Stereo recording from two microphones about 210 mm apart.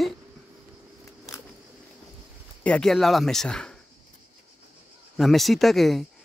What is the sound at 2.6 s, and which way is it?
Speech, 5° left (ahead or behind).